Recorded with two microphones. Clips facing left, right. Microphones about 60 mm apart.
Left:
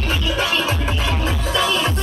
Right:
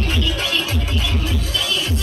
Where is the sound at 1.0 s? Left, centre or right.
Left.